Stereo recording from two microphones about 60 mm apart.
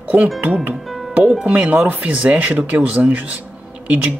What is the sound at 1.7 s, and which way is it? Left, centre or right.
Speech, right.